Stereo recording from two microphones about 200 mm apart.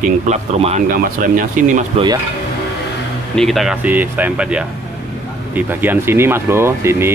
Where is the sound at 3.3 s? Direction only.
Centre (ahead or behind).